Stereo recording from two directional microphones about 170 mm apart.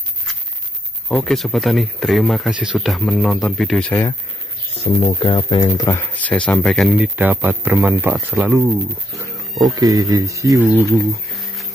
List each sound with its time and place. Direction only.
1.0 s speech: 5° left (ahead or behind)
5.0 s speech: 30° left (ahead or behind); by 7.1 s centre (ahead or behind)
7.2 s speech: 10° right (ahead or behind)
9.2 s speech: 20° right (ahead or behind)